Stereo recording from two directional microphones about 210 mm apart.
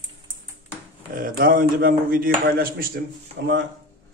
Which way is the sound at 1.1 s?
45° right (ahead or behind).